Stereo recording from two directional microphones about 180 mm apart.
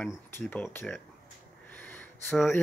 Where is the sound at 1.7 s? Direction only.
10° left (ahead or behind).